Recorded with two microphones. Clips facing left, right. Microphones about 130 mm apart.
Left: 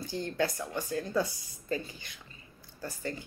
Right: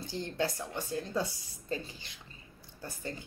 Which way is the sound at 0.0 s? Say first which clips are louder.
Left 2 dB; 25° right (ahead or behind).